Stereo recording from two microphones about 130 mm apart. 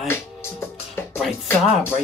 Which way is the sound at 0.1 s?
15° left (ahead or behind).